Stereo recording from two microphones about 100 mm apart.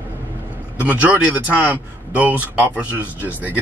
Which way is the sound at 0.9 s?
15° right (ahead or behind).